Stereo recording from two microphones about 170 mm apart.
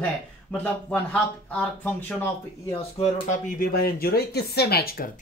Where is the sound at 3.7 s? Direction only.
60° left (ahead or behind).